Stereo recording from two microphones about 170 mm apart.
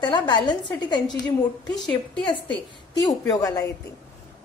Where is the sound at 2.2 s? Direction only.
30° left (ahead or behind).